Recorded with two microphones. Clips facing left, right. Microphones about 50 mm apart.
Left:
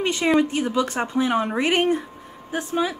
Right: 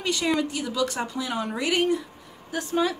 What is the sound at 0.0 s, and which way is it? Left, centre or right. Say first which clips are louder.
Speech: left 5 dB; left.